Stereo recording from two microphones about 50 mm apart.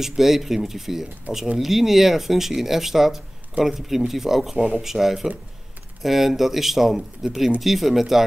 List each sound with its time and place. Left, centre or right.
0.0 s speech: centre
4.6 s speech: right
4.8 s speech: centre